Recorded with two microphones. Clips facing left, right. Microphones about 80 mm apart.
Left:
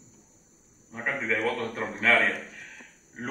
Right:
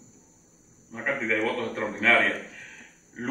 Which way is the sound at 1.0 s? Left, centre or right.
Centre.